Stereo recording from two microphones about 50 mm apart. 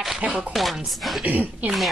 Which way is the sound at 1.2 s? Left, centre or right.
Right.